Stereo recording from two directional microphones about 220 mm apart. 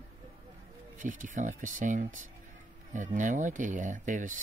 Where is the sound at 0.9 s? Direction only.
35° right (ahead or behind).